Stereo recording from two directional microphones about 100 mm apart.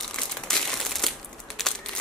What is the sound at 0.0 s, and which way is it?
Crumpling, 5° left (ahead or behind).